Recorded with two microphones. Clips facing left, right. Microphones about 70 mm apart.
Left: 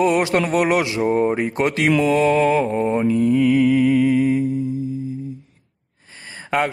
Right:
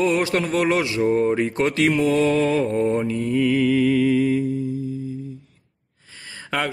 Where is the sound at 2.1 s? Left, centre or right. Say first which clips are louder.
Left 3 dB; left.